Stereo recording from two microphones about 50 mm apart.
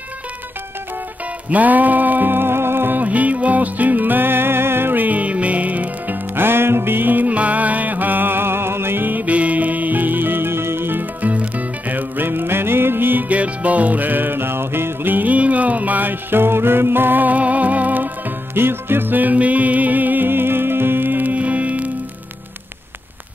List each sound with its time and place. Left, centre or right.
1.5 s music: right
3.0 s music: right
13.3 s music: right